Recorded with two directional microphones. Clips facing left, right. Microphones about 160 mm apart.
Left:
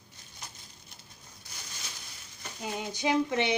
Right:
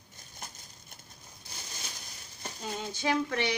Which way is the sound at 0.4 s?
50° right (ahead or behind).